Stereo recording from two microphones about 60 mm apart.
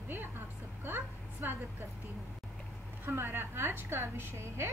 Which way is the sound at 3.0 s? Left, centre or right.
Right.